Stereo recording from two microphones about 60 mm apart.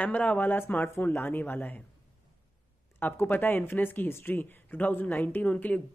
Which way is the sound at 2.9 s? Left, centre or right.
Left.